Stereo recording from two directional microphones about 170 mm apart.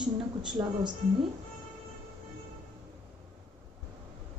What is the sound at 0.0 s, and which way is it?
Speech, 5° right (ahead or behind).